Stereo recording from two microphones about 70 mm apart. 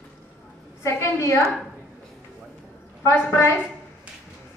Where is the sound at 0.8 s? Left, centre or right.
Left.